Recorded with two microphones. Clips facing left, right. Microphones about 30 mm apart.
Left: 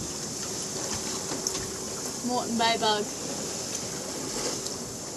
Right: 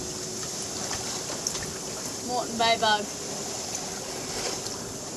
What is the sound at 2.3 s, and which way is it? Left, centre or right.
Speech, centre.